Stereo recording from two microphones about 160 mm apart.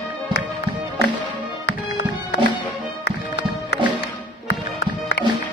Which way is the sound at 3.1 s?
90° left.